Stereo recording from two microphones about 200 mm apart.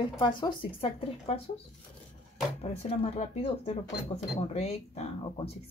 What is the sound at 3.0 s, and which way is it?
Speech, 30° left (ahead or behind).